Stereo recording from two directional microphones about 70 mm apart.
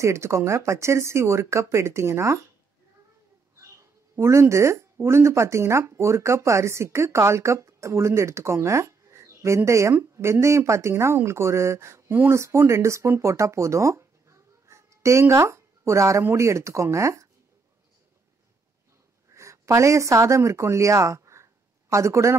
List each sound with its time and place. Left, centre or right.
0.0 s speech: right
3.7 s a sound: right
5.0 s speech: right
19.3 s speech: right